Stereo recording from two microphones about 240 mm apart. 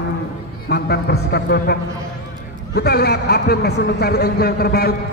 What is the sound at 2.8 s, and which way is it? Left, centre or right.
A man's voice, left.